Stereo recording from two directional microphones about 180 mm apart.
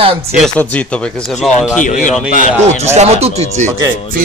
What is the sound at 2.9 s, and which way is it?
Speech, 35° right (ahead or behind).